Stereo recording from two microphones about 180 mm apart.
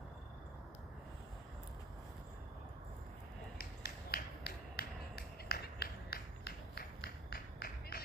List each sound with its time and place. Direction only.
3.5 s finger snapping: 60° left (ahead or behind)